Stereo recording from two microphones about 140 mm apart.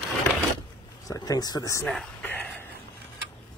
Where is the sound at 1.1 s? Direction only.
25° left (ahead or behind).